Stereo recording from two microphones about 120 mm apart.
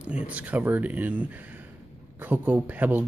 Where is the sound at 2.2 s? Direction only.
15° right (ahead or behind).